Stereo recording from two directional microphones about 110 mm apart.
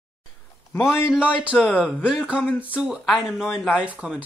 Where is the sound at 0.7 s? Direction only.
20° left (ahead or behind).